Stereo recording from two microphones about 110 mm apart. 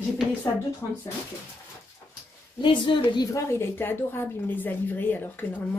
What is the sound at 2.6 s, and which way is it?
Speech, 45° left (ahead or behind).